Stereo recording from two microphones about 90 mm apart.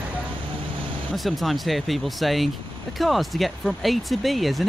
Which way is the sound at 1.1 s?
Centre (ahead or behind).